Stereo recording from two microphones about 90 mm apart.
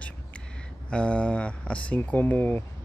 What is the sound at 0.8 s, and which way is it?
Speech, 10° left (ahead or behind).